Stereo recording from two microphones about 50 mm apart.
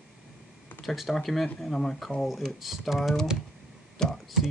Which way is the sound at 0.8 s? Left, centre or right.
Centre.